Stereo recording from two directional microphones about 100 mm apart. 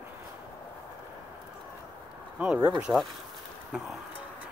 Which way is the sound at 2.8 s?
5° right (ahead or behind).